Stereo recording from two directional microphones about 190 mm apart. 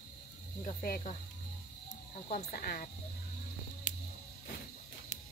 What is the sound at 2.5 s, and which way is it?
Speech, 50° left (ahead or behind).